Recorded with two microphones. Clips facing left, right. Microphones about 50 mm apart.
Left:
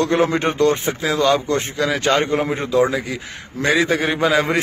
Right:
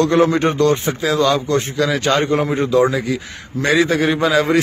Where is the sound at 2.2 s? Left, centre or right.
Centre.